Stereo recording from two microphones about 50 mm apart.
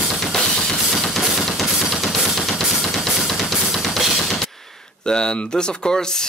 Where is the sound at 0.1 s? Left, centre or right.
Centre.